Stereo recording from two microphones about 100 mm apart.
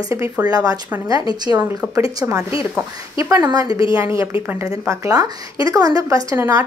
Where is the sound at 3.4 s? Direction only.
40° right (ahead or behind).